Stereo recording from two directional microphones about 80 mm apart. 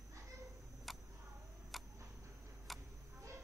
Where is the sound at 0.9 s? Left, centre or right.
Centre.